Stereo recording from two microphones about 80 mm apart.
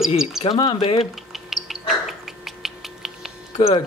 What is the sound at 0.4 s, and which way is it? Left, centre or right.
Speech, left.